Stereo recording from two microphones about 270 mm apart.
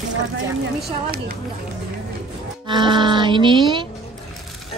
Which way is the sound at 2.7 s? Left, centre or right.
Centre.